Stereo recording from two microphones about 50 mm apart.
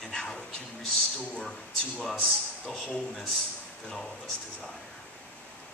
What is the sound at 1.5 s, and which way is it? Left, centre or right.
A man's voice, centre.